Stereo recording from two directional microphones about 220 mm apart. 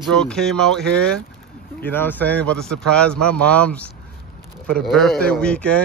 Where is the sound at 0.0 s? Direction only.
5° left (ahead or behind).